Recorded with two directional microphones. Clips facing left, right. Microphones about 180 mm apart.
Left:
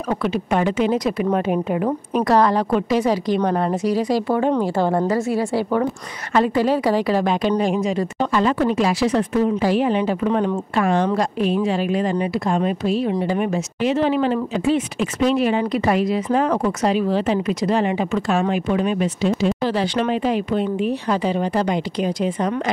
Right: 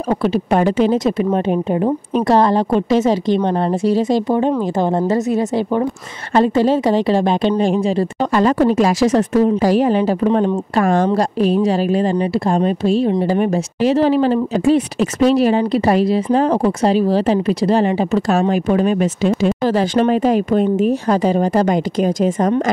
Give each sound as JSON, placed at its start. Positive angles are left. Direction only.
{"t": 0.1, "sound": "a woman's voice", "side_deg": -35}
{"t": 8.3, "sound": "a woman's voice", "side_deg": -40}